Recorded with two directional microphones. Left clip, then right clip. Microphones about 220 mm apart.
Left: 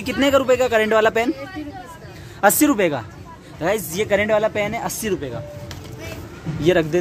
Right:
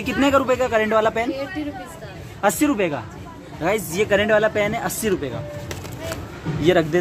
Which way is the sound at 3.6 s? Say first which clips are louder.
Even; 30° left (ahead or behind).